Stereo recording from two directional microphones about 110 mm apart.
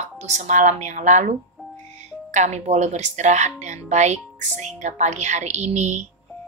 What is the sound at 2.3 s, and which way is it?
A woman's voice, 90° right.